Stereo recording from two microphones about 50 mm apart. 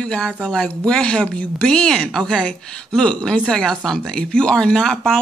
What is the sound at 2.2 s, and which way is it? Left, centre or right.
Speech, centre.